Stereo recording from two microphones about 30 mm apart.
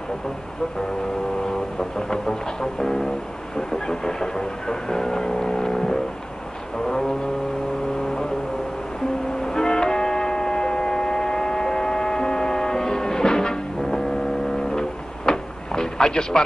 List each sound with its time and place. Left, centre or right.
1.8 s speech: left
9.4 s music: left